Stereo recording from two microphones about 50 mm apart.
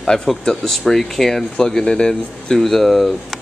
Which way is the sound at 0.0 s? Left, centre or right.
Centre.